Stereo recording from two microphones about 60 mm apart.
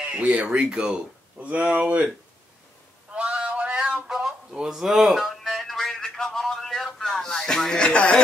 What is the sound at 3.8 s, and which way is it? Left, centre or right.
Music, centre.